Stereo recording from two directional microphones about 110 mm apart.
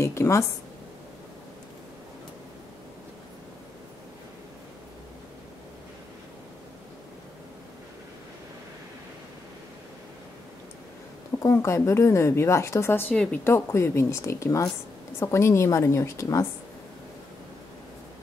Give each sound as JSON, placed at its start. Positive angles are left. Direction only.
{"t": 0.0, "sound": "a woman's voice", "side_deg": 25}
{"t": 11.3, "sound": "a woman's voice", "side_deg": 25}
{"t": 13.1, "sound": "a woman's voice", "side_deg": 10}
{"t": 13.4, "sound": "a woman's voice", "side_deg": 25}